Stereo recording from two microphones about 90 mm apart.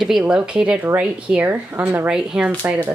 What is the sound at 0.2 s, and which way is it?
Speech, 10° right (ahead or behind).